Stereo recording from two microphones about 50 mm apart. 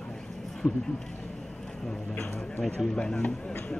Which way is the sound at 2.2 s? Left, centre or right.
Centre.